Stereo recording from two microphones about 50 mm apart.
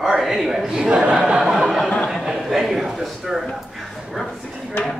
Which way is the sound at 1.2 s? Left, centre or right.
Centre.